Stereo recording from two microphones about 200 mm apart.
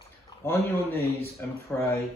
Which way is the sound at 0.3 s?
20° left (ahead or behind).